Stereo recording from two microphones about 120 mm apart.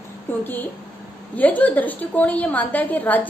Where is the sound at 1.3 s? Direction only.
15° left (ahead or behind).